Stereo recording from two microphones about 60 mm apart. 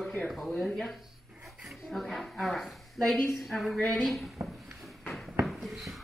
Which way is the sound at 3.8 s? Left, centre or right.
Left.